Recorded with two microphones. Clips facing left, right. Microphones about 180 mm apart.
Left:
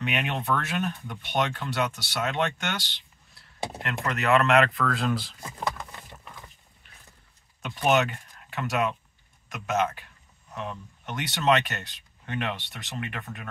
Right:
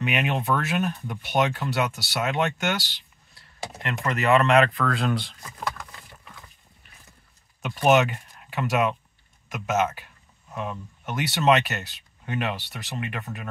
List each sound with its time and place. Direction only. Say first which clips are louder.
0.0 s speech: right 4 dB; 5° right (ahead or behind)
5.4 s a sound: left 1 dB; 25° left (ahead or behind)
7.6 s speech: right 4 dB; 10° right (ahead or behind)